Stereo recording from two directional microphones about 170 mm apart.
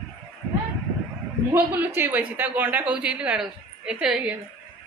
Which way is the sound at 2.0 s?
10° right (ahead or behind).